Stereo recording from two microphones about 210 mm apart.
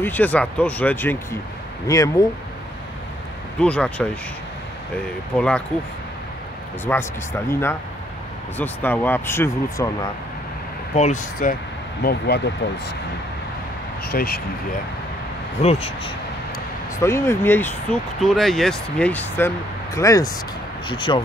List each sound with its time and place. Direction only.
0.0 s speech: 10° left (ahead or behind)
3.6 s speech: 5° left (ahead or behind)
5.3 s speech: 5° left (ahead or behind)
6.9 s speech: 10° left (ahead or behind)
11.0 s speech: 35° left (ahead or behind)
12.0 s speech: 50° left (ahead or behind)
14.0 s speech: 45° left (ahead or behind)
15.6 s speech: 30° left (ahead or behind)
17.0 s speech: 10° left (ahead or behind)